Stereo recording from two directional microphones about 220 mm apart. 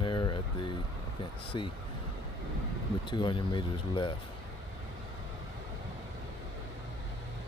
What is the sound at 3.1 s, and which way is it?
Speech, 20° left (ahead or behind).